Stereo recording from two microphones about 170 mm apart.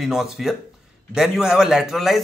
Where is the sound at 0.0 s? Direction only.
Centre (ahead or behind).